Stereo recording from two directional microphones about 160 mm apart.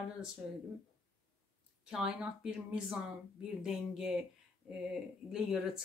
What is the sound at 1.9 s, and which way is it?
Speech, 5° right (ahead or behind).